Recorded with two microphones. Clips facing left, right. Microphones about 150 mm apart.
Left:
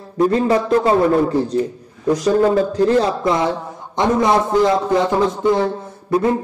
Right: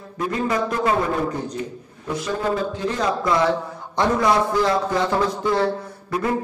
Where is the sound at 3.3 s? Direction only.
20° left (ahead or behind).